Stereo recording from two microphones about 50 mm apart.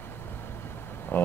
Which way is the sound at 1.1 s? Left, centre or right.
Left.